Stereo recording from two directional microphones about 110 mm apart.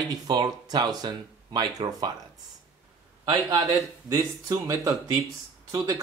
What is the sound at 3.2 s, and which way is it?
Speech, 35° right (ahead or behind).